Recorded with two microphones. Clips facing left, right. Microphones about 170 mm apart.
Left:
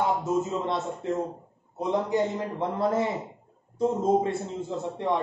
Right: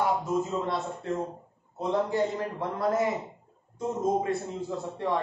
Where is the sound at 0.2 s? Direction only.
20° left (ahead or behind).